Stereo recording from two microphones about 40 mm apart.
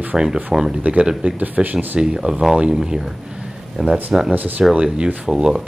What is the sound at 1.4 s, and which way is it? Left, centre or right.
Speech, right.